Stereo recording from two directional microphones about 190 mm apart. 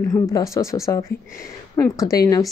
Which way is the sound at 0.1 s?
15° left (ahead or behind).